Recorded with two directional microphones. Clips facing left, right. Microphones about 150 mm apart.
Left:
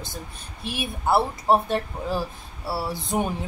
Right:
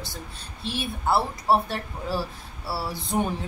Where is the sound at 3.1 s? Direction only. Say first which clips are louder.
Even; 15° left (ahead or behind).